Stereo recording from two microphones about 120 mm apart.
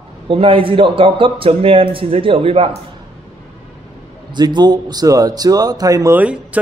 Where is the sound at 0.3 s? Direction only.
50° right (ahead or behind).